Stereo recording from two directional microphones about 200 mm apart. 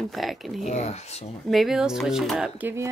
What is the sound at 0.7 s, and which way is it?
Speech, 35° left (ahead or behind).